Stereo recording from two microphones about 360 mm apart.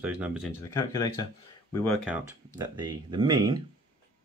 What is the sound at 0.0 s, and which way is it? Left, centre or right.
Speech, centre.